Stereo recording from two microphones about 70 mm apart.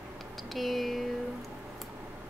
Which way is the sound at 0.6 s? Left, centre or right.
Centre.